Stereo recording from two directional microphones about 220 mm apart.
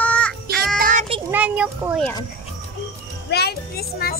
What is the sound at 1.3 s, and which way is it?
Speech, 5° right (ahead or behind).